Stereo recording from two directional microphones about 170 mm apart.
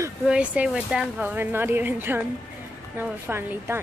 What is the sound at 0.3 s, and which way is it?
Speech, 5° right (ahead or behind).